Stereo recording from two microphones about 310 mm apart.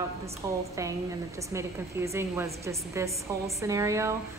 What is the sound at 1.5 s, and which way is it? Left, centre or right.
A woman's voice, centre.